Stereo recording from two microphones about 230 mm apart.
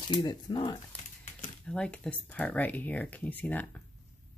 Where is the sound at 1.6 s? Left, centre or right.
Centre.